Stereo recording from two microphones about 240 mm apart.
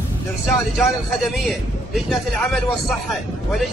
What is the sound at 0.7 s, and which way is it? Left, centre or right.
A man's voice, centre.